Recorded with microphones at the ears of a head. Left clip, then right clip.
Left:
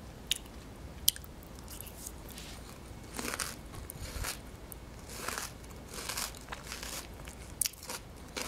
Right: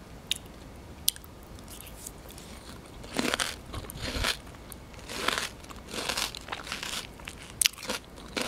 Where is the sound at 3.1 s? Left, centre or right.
Right.